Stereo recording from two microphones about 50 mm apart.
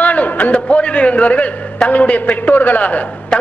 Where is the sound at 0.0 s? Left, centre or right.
Left.